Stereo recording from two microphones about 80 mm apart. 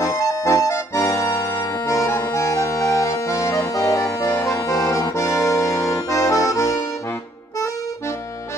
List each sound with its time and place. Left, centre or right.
0.0 s music: left